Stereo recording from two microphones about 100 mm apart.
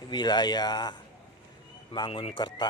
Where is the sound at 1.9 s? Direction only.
55° left (ahead or behind).